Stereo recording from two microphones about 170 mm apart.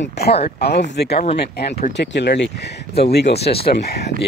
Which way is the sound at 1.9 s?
90° left.